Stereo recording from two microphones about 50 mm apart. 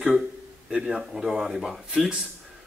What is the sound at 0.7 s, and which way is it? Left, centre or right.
Speech, centre.